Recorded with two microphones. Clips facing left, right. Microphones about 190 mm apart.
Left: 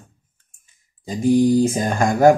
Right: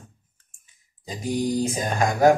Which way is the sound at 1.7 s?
50° left (ahead or behind).